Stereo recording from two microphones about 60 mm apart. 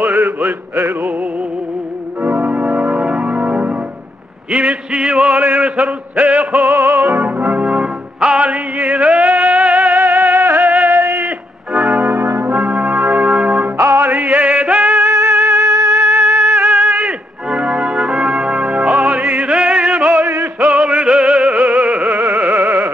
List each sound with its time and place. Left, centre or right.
0.0 s a sound: right
2.2 s organ: right
4.5 s a sound: centre
5.4 s music: right
6.8 s music: right
7.6 s music: centre; by 10.9 s right
10.9 s a sound: right
11.7 s music: centre
12.0 s brass instrument: right
13.1 s organ: centre
13.7 s music: right
14.0 s music: right
15.6 s music: right
16.3 s music: right